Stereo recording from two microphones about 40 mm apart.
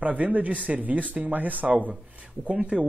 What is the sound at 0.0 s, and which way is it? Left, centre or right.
Speech, right.